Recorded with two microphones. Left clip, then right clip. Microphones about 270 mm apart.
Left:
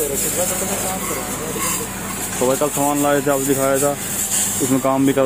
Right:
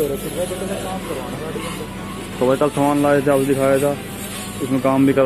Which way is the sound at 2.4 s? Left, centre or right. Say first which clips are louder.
Right 2 dB; centre.